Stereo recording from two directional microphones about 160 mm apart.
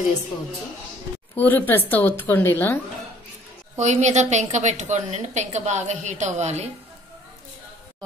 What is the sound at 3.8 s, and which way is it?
A woman's voice, 45° right (ahead or behind).